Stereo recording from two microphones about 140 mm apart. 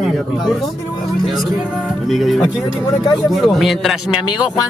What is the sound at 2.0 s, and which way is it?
Music, centre (ahead or behind).